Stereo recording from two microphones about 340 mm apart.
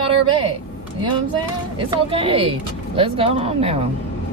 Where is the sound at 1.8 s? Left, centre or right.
Centre.